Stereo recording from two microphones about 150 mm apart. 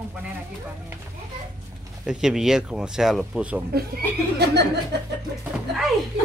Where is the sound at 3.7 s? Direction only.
90° right.